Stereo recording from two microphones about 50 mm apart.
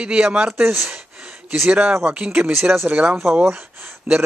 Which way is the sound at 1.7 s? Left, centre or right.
Right.